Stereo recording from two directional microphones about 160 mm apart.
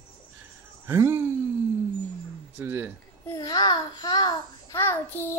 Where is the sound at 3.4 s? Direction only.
25° left (ahead or behind).